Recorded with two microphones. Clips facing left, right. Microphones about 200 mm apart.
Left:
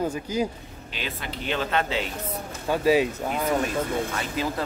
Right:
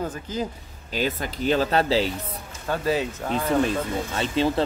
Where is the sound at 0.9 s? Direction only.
40° right (ahead or behind).